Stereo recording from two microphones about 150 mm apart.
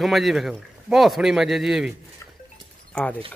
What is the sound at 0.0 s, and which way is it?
Speech, centre (ahead or behind).